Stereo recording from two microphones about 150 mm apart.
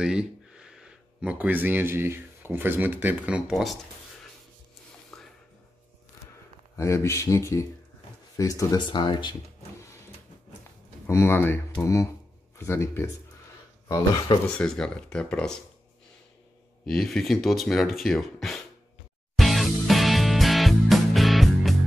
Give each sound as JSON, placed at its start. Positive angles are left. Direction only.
{"t": 0.0, "sound": "speech", "side_deg": -5}
{"t": 5.1, "sound": "music", "side_deg": 0}
{"t": 6.8, "sound": "speech", "side_deg": 20}
{"t": 11.1, "sound": "speech", "side_deg": 15}
{"t": 13.8, "sound": "speech", "side_deg": 25}
{"t": 14.6, "sound": "speech", "side_deg": 5}
{"t": 16.8, "sound": "speech", "side_deg": 5}
{"t": 19.3, "sound": "music", "side_deg": 0}